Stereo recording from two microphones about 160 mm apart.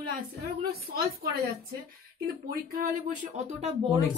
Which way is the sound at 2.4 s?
55° right (ahead or behind).